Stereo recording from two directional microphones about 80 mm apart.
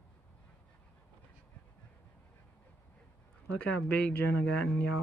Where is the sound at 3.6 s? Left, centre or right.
Centre.